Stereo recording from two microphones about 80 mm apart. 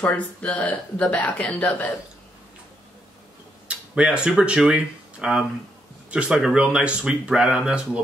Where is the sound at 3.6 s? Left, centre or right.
Centre.